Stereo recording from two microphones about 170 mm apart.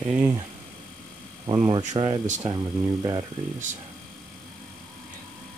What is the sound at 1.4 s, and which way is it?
Speech, 20° right (ahead or behind).